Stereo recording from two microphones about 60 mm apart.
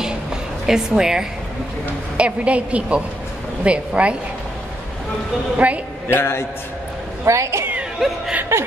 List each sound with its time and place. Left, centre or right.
0.7 s a woman's voice: centre
2.1 s a woman's voice: right
5.6 s a woman's voice: right
6.0 s a man's voice: left
7.2 s speech: right
8.5 s chuckle: right